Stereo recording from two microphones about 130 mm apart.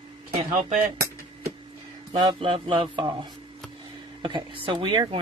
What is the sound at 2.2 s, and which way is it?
Speech, 45° right (ahead or behind).